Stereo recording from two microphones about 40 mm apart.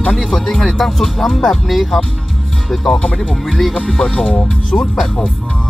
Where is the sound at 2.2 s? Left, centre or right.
Centre.